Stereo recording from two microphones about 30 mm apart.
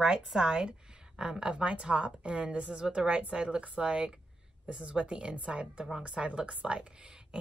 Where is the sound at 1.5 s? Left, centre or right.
Right.